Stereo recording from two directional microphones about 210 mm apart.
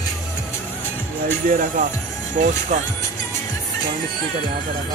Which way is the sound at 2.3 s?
35° right (ahead or behind).